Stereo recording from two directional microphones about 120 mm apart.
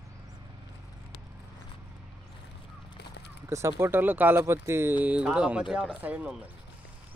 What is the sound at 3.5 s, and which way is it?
Speech, 25° right (ahead or behind).